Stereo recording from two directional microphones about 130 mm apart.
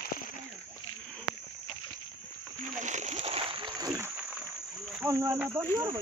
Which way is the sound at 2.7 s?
65° right (ahead or behind).